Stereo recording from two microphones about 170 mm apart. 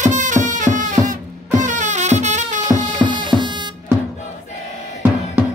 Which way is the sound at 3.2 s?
25° right (ahead or behind).